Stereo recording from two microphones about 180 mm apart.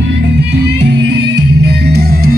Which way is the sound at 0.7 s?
70° right (ahead or behind).